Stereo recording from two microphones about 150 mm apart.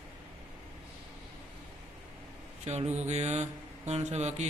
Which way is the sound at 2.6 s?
50° right (ahead or behind).